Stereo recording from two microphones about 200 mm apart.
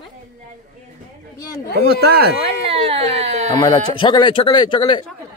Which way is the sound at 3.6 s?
25° left (ahead or behind).